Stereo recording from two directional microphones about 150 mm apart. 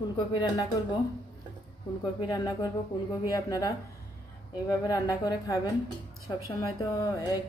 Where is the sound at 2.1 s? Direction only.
25° left (ahead or behind).